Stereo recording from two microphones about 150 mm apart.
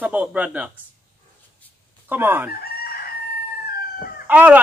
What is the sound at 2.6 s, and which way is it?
Chicken, 90° left.